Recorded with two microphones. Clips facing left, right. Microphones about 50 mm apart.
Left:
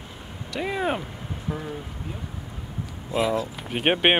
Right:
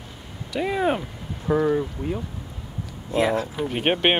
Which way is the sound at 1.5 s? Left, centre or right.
Right.